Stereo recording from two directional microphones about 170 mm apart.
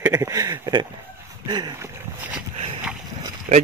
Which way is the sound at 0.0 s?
15° right (ahead or behind).